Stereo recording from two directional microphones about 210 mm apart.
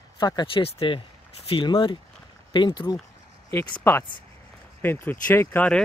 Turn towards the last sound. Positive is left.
turn(degrees=10)  # may be behind; listen again after turning